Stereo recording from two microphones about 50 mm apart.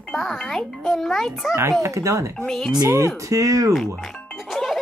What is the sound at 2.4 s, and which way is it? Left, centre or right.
Speech, centre.